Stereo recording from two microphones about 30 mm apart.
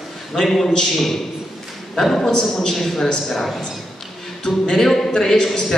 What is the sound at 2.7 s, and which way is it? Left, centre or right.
Speech, centre.